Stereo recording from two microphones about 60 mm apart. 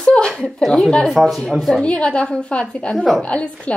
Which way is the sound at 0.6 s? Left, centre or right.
Centre.